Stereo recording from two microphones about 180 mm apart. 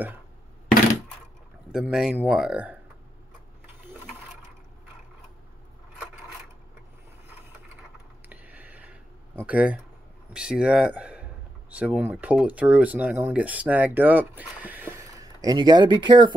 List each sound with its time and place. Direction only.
1.7 s speech: 5° right (ahead or behind)
8.3 s a sound: 10° right (ahead or behind)
9.4 s speech: 10° right (ahead or behind); by 16.3 s 25° right (ahead or behind)